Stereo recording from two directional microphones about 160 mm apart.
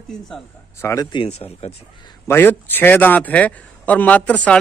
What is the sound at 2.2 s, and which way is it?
A man's voice, 15° left (ahead or behind).